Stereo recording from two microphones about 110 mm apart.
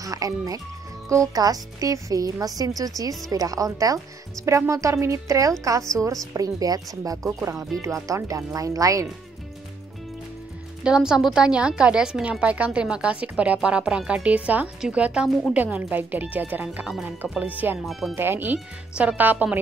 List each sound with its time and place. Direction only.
0.0 s speech: 30° right (ahead or behind)
10.8 s a woman's voice: 5° right (ahead or behind)